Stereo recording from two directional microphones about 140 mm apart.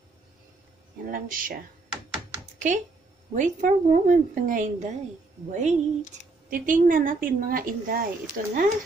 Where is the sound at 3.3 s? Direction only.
65° right (ahead or behind).